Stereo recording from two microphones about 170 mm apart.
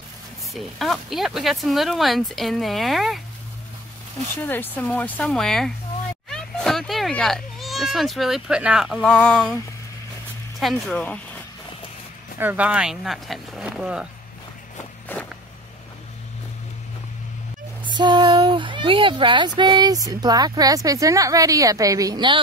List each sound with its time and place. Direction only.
0.5 s speech: centre (ahead or behind)
4.4 s a child's voice: 10° left (ahead or behind)
10.6 s speech: centre (ahead or behind)
12.4 s speech: 10° right (ahead or behind)
17.8 s speech: 25° right (ahead or behind)